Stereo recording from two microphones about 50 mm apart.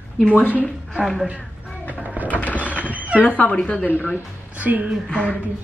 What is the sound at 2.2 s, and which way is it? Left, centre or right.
Music, left.